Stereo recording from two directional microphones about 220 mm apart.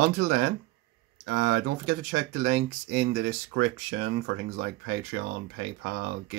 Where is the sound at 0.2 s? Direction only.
45° right (ahead or behind).